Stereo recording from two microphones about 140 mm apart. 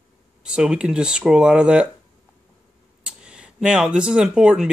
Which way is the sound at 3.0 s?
5° right (ahead or behind).